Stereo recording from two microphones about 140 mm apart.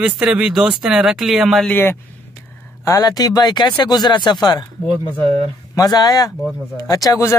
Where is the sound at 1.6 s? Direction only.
15° left (ahead or behind).